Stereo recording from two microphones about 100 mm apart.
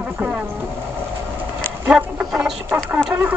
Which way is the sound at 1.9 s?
10° right (ahead or behind).